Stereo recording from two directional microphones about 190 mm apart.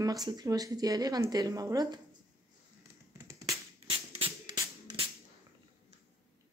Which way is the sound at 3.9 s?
30° right (ahead or behind).